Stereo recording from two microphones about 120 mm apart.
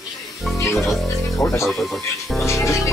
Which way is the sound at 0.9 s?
Centre (ahead or behind).